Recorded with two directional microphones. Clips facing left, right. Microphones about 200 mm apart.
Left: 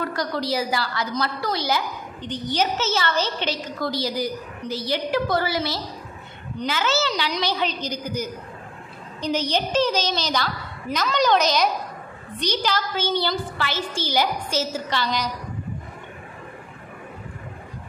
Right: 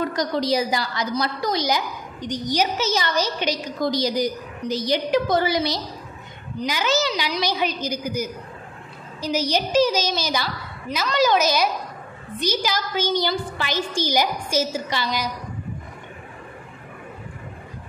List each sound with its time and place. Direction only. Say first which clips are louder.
0.0 s a woman's voice: right 3 dB; 20° right (ahead or behind)
9.5 s a woman's voice: right 4 dB; 10° right (ahead or behind)